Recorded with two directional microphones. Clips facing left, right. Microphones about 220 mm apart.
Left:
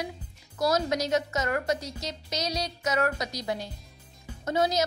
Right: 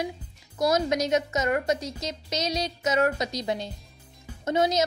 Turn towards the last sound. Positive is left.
turn(degrees=-20)  # may be behind; listen again after turning